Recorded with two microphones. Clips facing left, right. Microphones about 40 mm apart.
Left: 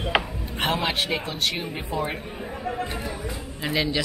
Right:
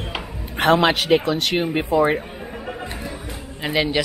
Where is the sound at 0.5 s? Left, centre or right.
Right.